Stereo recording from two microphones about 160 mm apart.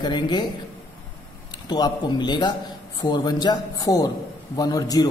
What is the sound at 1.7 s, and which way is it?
A man's voice, 25° left (ahead or behind).